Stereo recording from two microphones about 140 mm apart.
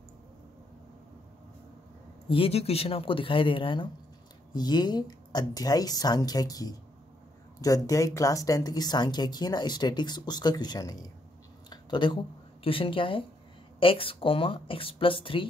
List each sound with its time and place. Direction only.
2.2 s speech: 40° left (ahead or behind)
11.7 s a sound: 35° left (ahead or behind)
12.6 s speech: 40° left (ahead or behind)